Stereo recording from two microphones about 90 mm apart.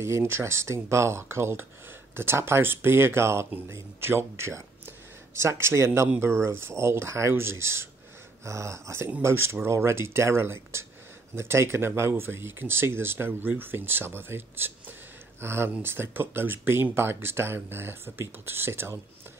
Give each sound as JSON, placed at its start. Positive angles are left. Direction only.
{"t": 0.0, "sound": "speech", "side_deg": -30}